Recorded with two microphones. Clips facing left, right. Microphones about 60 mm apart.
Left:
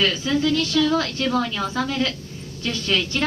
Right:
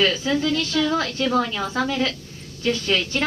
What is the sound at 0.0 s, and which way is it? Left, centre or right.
A woman's voice, right.